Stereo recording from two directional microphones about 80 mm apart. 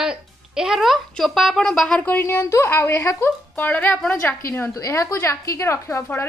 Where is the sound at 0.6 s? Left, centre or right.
Centre.